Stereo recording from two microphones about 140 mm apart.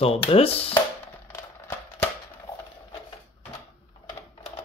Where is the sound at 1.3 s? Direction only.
15° left (ahead or behind).